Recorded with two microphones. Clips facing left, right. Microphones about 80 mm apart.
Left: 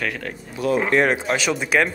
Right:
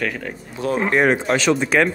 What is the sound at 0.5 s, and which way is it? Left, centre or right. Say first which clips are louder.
Speech: left 1 dB; right.